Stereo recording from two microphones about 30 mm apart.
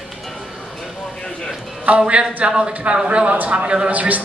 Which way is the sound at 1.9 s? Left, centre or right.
Right.